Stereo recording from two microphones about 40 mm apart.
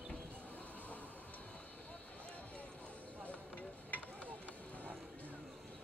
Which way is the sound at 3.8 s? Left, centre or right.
Left.